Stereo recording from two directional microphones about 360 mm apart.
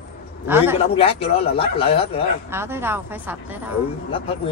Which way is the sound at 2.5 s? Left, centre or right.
Centre.